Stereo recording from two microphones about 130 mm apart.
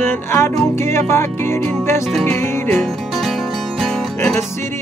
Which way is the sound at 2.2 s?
15° left (ahead or behind).